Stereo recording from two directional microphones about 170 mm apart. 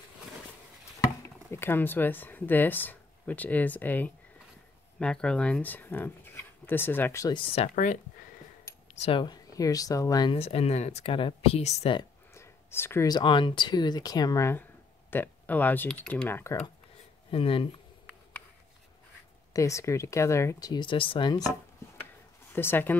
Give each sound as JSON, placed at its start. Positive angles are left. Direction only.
{"t": 1.5, "sound": "speech", "side_deg": 15}
{"t": 7.3, "sound": "speech", "side_deg": 35}
{"t": 7.7, "sound": "speech", "side_deg": 50}
{"t": 9.0, "sound": "speech", "side_deg": 30}
{"t": 12.4, "sound": "speech", "side_deg": 15}
{"t": 17.3, "sound": "speech", "side_deg": 30}
{"t": 19.5, "sound": "speech", "side_deg": 20}
{"t": 22.5, "sound": "speech", "side_deg": 10}